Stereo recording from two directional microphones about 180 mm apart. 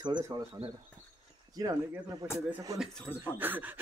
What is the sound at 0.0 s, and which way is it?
Speech, 25° right (ahead or behind).